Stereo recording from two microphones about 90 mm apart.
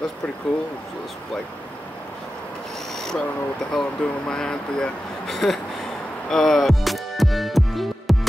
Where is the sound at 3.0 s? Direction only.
5° left (ahead or behind).